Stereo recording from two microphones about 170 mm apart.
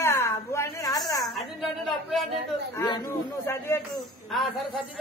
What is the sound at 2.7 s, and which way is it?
Speech, 25° left (ahead or behind).